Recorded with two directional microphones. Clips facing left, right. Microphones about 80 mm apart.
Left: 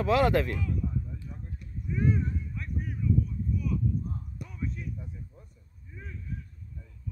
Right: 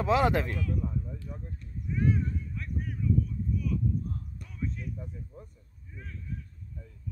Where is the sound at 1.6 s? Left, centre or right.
Centre.